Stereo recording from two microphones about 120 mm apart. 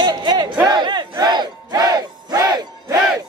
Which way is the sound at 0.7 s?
40° right (ahead or behind).